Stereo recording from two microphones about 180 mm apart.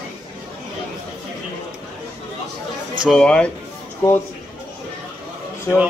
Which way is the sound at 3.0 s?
5° left (ahead or behind).